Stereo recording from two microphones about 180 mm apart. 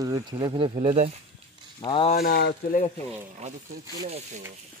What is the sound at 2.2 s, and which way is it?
Speech, 60° left (ahead or behind).